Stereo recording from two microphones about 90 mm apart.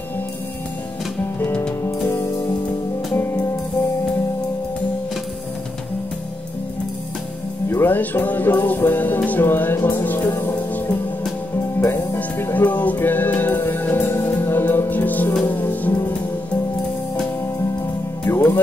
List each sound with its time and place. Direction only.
1.9 s music: 30° left (ahead or behind)
7.7 s music: 25° left (ahead or behind)
11.8 s music: 30° left (ahead or behind)
18.2 s music: 30° left (ahead or behind)